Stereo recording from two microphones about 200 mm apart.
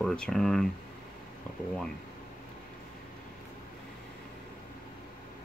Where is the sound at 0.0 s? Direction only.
5° left (ahead or behind).